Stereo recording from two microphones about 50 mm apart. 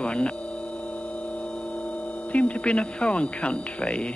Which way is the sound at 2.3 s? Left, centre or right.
Left.